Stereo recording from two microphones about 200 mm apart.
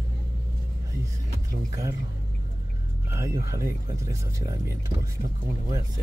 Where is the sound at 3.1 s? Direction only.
15° right (ahead or behind).